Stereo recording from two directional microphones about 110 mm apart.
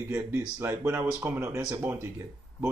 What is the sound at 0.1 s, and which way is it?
Speech, 20° right (ahead or behind).